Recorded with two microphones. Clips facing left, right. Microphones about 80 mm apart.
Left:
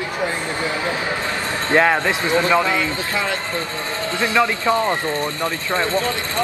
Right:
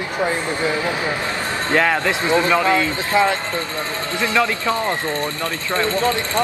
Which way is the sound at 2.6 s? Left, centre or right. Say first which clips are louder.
Right 3 dB; right.